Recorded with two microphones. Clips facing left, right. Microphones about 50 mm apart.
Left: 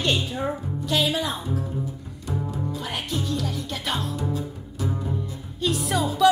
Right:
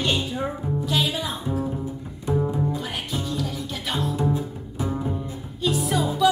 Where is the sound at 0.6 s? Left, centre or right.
Centre.